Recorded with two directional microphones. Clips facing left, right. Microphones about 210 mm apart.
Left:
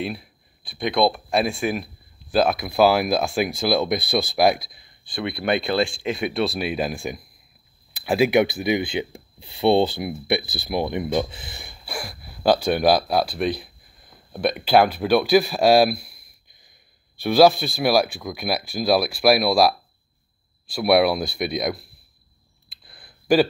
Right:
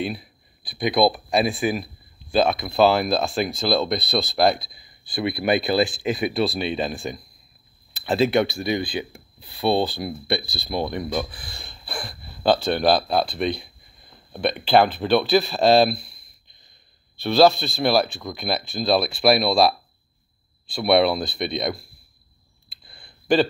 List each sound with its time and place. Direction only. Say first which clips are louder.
0.0 s speech: right 1 dB; centre (ahead or behind)
4.7 s speech: right 2 dB; 5° right (ahead or behind); by 11.1 s 15° left (ahead or behind)
11.1 s speech: left 3 dB; 25° left (ahead or behind); by 19.7 s 5° left (ahead or behind)
20.7 s speech: left 1 dB; 5° left (ahead or behind)
22.8 s a sound: left 1 dB; 5° left (ahead or behind)